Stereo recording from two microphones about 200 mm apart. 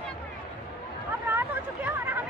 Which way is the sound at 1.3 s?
10° right (ahead or behind).